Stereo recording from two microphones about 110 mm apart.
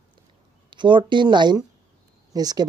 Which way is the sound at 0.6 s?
45° right (ahead or behind).